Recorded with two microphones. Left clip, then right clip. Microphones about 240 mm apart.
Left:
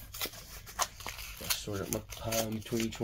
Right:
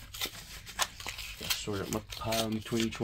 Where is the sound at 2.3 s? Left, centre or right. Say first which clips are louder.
Right 2 dB; right.